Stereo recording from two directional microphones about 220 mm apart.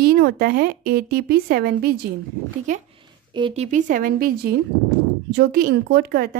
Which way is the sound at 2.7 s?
35° right (ahead or behind).